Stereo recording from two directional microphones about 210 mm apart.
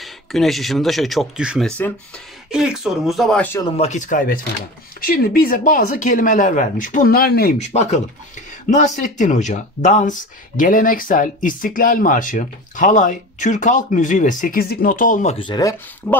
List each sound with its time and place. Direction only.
0.0 s speech: centre (ahead or behind)
3.7 s speech: 30° left (ahead or behind)
7.5 s speech: 30° left (ahead or behind)
15.3 s speech: 20° left (ahead or behind)
16.0 s speech: 10° left (ahead or behind)